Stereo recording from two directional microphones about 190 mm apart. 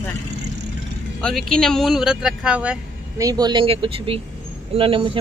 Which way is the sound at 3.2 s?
20° right (ahead or behind).